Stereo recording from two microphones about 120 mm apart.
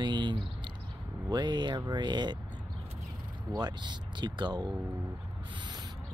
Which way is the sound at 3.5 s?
35° right (ahead or behind).